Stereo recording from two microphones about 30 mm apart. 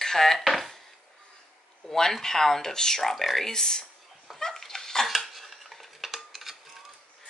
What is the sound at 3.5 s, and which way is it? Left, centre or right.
Speech, left.